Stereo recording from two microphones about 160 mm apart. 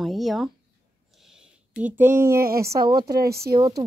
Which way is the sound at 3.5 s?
25° right (ahead or behind).